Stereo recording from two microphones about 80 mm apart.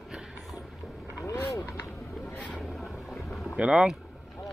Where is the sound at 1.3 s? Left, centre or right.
Left.